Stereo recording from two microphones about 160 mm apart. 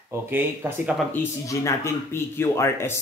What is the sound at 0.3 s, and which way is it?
Speech, 15° right (ahead or behind).